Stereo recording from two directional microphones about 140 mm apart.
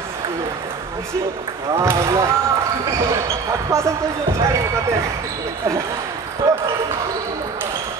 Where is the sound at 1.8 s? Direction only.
20° right (ahead or behind).